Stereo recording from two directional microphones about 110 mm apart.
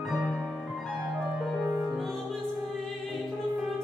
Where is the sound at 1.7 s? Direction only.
5° left (ahead or behind).